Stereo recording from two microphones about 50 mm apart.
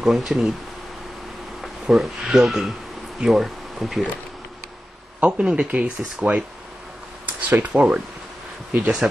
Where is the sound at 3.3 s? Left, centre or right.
Centre.